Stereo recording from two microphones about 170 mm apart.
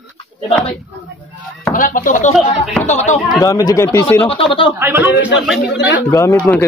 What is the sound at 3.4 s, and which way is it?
Speech, 20° left (ahead or behind).